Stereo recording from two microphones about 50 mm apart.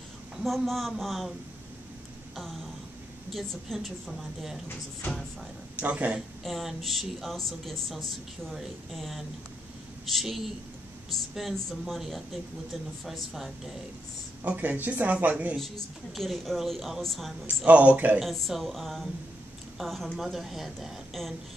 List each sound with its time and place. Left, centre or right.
0.4 s a woman's voice: centre
3.3 s a woman's voice: centre
5.8 s speech: right
6.4 s a woman's voice: centre
14.4 s speech: right
15.5 s a woman's voice: centre
17.6 s a man's voice: right
18.2 s a woman's voice: centre